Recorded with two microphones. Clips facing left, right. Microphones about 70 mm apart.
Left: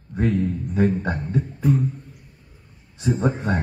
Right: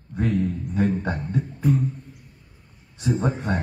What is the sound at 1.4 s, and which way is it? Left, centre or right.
Beatboxing, centre.